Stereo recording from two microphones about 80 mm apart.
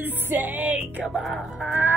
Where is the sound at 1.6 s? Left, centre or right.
Right.